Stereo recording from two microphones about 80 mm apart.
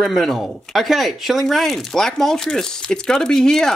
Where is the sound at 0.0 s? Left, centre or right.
Centre.